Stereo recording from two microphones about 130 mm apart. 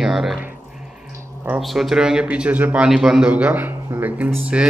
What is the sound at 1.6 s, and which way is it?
A man's voice, centre (ahead or behind).